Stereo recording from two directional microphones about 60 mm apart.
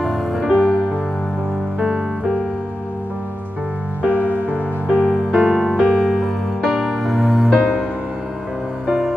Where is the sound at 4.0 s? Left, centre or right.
Right.